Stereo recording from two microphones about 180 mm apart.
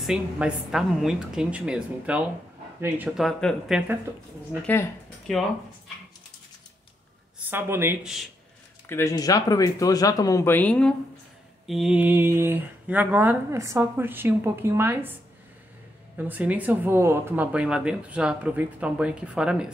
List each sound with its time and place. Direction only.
0.0 s a woman's voice: 5° right (ahead or behind)
5.3 s a woman's voice: centre (ahead or behind)
7.3 s speech: 10° right (ahead or behind)
8.0 s a woman's voice: centre (ahead or behind)
8.8 s speech: 15° left (ahead or behind); by 15.1 s 10° right (ahead or behind)
16.2 s speech: 10° right (ahead or behind)